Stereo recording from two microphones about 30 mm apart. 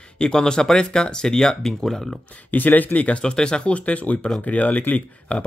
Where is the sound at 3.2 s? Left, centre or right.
Left.